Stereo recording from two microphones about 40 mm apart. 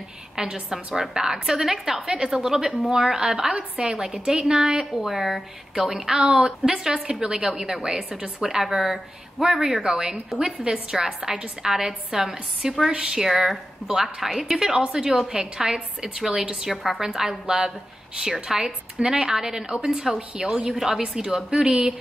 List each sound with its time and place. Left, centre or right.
0.4 s a woman's voice: centre
2.0 s a woman's voice: right
4.9 s a woman's voice: centre
9.4 s a woman's voice: centre
13.5 s speech: centre
14.8 s a woman's voice: centre
16.7 s speech: centre
17.0 s a woman's voice: centre
19.3 s a woman's voice: centre